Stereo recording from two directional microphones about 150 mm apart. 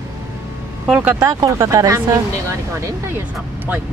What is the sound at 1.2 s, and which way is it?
Speech, 20° right (ahead or behind).